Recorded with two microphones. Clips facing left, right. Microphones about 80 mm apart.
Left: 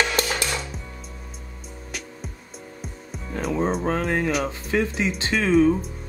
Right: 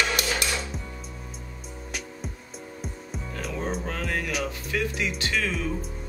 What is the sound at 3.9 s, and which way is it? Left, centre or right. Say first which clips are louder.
Speech: left 7 dB; left.